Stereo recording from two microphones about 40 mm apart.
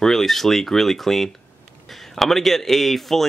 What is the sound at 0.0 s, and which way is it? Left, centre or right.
Speech, centre.